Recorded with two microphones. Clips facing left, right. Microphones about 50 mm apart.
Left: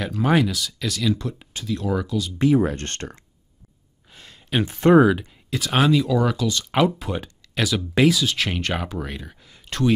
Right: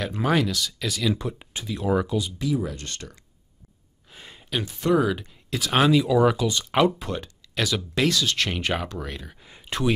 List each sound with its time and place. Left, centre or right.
0.3 s speech: centre
1.1 s speech: centre
2.3 s speech: left
4.1 s a sound: centre
4.6 s speech: left
5.1 s speech: centre
6.7 s speech: centre
8.5 s speech: centre
8.8 s speech: centre
9.4 s a sound: centre